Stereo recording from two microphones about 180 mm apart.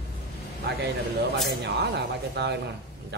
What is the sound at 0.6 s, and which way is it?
Speech, 70° right (ahead or behind).